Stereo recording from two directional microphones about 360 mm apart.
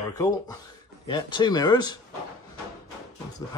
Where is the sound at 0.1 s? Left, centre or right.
Centre.